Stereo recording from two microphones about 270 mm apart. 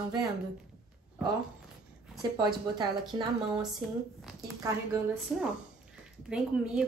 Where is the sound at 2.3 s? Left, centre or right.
Centre.